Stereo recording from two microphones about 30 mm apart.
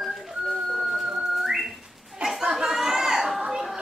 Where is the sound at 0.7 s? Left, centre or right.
Centre.